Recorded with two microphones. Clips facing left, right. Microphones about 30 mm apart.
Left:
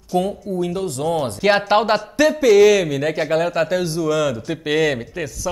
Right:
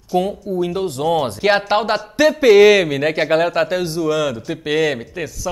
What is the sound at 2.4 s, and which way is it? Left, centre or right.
A man's voice, right.